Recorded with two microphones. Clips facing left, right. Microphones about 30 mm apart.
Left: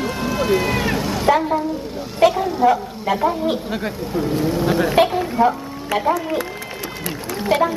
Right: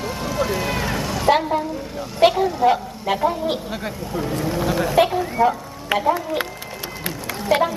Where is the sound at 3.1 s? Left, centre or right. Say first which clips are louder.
Left 2 dB; centre.